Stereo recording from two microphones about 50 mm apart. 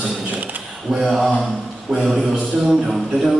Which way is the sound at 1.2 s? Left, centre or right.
Centre.